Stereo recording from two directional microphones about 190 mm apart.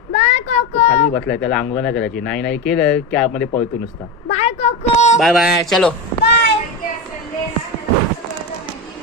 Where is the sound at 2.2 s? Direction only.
5° left (ahead or behind).